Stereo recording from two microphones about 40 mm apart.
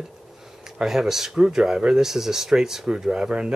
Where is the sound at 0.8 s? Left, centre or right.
Centre.